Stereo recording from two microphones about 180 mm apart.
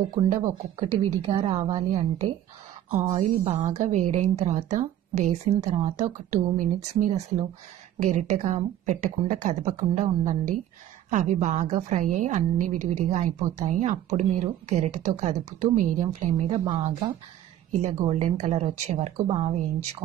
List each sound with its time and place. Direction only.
0.7 s a woman's voice: 30° right (ahead or behind)
2.9 s a woman's voice: 40° right (ahead or behind)
16.4 s a woman's voice: 25° right (ahead or behind)
17.8 s a woman's voice: 40° right (ahead or behind)